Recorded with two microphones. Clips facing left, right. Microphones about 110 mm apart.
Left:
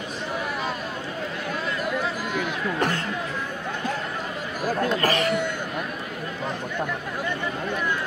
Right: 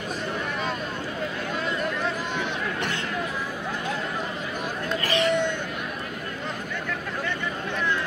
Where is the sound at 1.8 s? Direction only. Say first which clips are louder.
Left 1 dB; 5° left (ahead or behind).